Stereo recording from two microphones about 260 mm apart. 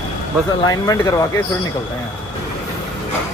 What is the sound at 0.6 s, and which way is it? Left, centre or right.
Speech, centre.